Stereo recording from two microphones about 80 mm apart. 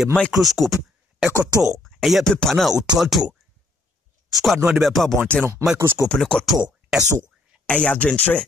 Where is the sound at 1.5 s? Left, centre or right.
Left.